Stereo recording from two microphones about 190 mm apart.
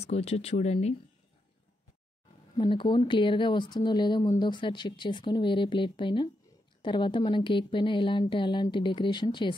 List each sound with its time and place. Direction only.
0.0 s speech: 35° left (ahead or behind)
2.5 s speech: 25° left (ahead or behind)